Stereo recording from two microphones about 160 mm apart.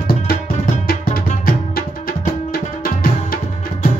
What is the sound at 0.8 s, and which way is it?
Music, 60° left (ahead or behind).